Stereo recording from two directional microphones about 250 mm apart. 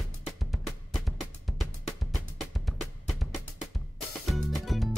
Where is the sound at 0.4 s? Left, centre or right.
Centre.